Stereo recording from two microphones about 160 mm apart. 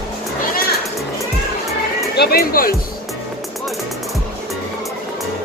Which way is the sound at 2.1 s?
80° left.